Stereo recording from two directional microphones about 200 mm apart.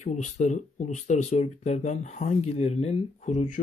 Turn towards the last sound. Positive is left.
turn(degrees=35)  # may be behind; listen again after turning